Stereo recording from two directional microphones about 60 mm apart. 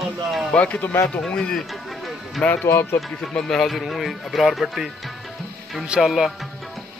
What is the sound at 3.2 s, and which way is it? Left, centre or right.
Speech, centre.